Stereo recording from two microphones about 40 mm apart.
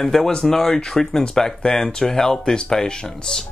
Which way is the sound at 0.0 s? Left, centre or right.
Centre.